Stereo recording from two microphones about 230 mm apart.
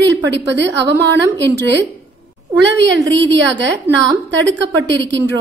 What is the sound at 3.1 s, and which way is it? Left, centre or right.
A woman's voice, right.